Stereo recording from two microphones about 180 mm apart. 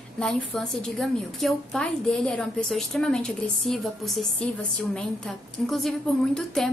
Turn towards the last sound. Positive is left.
turn(degrees=5)  # may be behind; listen again after turning